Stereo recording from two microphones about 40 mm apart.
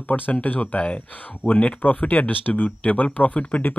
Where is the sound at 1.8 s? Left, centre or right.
Left.